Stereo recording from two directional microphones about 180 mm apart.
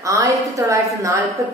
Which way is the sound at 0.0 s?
20° right (ahead or behind).